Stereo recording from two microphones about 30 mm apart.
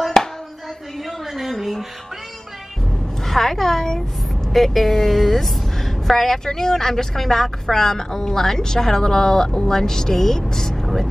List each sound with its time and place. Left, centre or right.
0.0 s a sound: centre
1.6 s music: centre
3.3 s a woman's voice: centre
10.5 s vehicle: centre